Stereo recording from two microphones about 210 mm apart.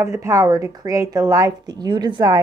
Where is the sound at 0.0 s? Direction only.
15° right (ahead or behind).